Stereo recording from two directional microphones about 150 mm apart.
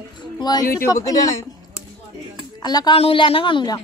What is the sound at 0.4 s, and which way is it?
Speech, 30° left (ahead or behind).